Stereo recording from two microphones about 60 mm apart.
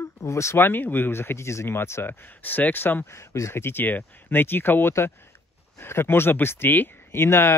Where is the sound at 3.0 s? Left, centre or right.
Left.